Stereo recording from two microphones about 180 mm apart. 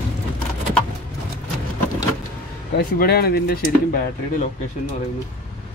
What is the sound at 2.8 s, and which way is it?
Speech, 60° left (ahead or behind).